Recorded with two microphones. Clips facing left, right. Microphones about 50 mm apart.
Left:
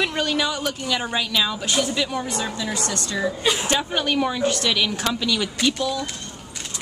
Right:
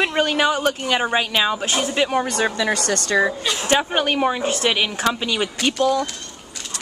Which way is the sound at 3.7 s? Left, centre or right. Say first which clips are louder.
Right 4 dB; right.